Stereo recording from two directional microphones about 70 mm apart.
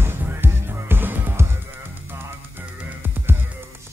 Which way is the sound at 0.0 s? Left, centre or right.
Right.